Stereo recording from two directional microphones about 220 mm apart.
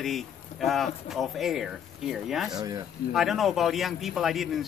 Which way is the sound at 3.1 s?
Centre (ahead or behind).